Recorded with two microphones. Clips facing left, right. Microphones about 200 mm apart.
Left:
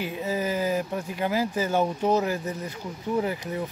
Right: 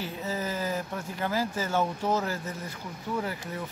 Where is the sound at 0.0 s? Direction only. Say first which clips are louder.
Left 5 dB; 15° left (ahead or behind).